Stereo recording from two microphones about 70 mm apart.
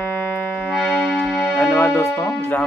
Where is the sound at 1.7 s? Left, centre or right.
Left.